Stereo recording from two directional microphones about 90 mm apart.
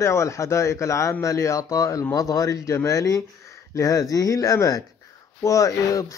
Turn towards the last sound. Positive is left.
turn(degrees=40)  # may be behind; listen again after turning